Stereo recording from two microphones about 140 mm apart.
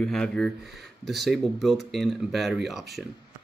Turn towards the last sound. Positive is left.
turn(degrees=0)  # may be behind; listen again after turning